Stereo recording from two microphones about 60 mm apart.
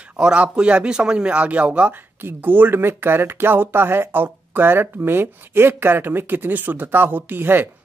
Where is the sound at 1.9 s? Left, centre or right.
Right.